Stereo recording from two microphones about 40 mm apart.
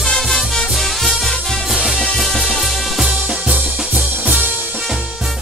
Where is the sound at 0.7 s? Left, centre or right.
Centre.